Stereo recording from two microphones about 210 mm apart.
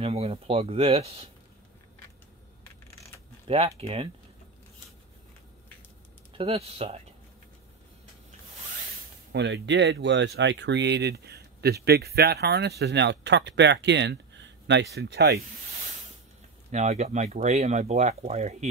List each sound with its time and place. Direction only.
0.0 s speech: 30° right (ahead or behind)
3.4 s speech: 30° right (ahead or behind)
6.3 s speech: 30° right (ahead or behind)
9.3 s speech: 55° right (ahead or behind)
16.7 s speech: 35° right (ahead or behind)